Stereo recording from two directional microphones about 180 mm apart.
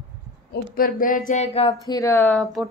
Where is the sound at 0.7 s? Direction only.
50° left (ahead or behind); by 1.7 s 35° left (ahead or behind).